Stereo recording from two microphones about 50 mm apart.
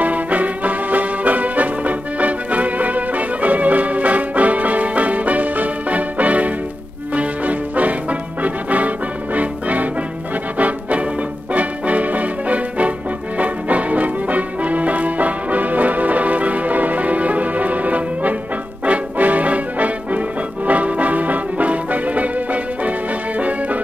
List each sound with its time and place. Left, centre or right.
0.0 s music: right